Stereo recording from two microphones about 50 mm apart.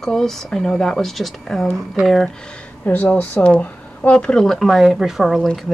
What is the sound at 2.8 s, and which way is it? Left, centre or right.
Speech, left.